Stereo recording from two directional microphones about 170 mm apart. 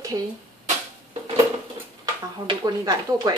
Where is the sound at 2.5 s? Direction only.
25° right (ahead or behind).